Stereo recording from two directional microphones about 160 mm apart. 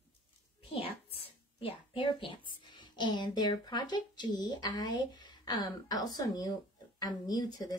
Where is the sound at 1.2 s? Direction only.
35° left (ahead or behind).